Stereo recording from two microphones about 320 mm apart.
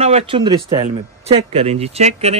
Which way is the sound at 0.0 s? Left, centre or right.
Centre.